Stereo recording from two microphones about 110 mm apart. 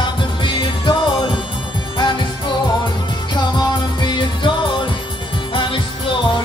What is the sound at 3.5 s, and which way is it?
Music, 45° left (ahead or behind).